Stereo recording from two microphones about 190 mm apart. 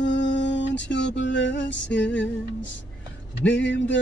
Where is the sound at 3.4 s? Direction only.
70° left (ahead or behind).